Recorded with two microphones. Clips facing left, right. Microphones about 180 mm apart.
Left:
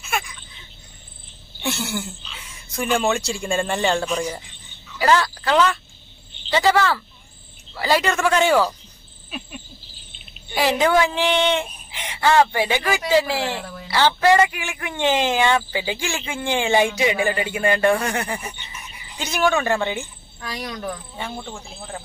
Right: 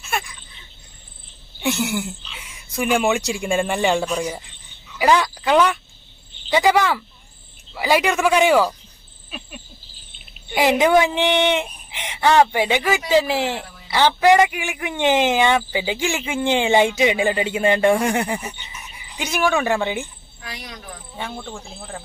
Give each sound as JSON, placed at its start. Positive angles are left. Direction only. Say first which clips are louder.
{"t": 1.6, "sound": "a sound", "louder": "right 4 dB", "side_deg": -15}
{"t": 2.7, "sound": "speech", "louder": "right 2 dB", "side_deg": -10}
{"t": 10.5, "sound": "a man's voice", "louder": "right 3 dB", "side_deg": -20}
{"t": 21.4, "sound": "speech", "louder": "right 1 dB", "side_deg": 5}